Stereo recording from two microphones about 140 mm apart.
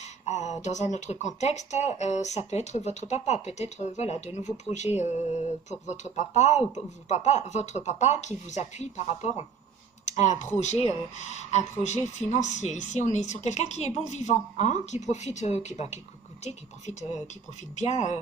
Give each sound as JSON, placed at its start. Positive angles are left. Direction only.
{"t": 0.0, "sound": "speech", "side_deg": 55}